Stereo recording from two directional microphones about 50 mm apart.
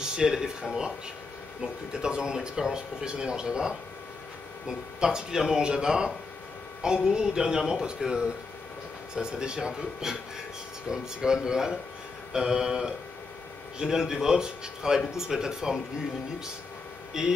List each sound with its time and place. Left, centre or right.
0.0 s speech: centre
17.1 s speech: centre